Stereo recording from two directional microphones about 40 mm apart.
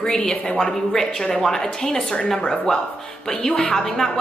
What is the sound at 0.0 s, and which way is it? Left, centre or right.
A woman's voice, centre.